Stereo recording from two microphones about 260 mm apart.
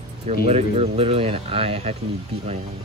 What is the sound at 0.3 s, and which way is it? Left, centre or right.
Speech, right.